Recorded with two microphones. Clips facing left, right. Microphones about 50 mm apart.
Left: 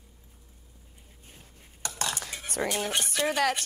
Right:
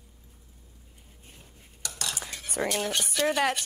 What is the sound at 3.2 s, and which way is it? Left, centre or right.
Speech, centre.